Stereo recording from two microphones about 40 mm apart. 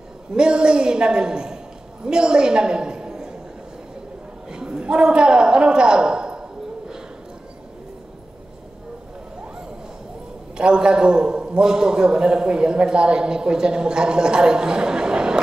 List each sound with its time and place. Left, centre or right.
0.3 s a woman's voice: right
4.5 s a woman's voice: right
10.6 s a man's voice: right